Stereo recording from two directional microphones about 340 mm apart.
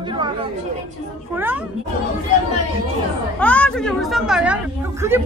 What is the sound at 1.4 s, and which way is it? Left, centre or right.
Music, centre.